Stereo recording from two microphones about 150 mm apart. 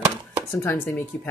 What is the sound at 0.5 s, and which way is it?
Speech, 15° left (ahead or behind).